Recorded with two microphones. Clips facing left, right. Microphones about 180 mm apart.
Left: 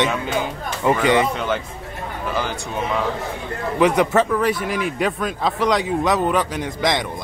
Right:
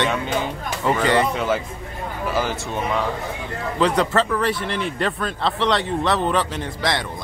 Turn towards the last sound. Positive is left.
turn(degrees=15)  # may be behind; listen again after turning